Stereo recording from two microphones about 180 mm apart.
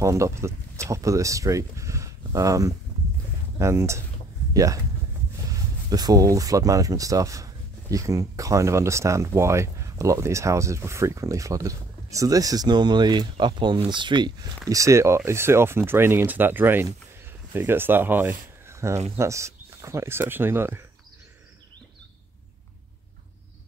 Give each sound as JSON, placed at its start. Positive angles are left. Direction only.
{"t": 0.0, "sound": "speech", "side_deg": -15}
{"t": 5.5, "sound": "speech", "side_deg": -20}